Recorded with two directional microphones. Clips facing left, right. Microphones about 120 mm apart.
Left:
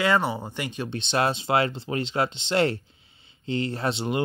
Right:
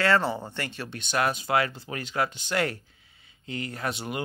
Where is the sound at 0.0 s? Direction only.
15° left (ahead or behind).